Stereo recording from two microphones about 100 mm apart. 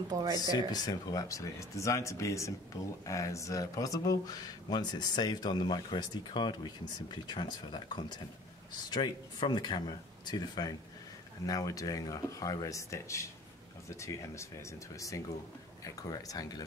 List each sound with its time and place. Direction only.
0.1 s speech: 40° right (ahead or behind)
0.4 s speech: 40° left (ahead or behind)